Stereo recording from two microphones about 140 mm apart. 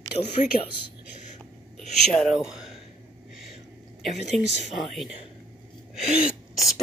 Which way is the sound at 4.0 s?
Centre (ahead or behind).